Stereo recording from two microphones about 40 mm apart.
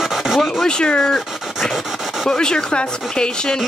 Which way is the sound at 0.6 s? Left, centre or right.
Centre.